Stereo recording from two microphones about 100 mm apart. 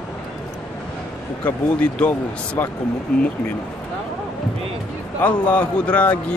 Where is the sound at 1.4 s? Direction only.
15° left (ahead or behind).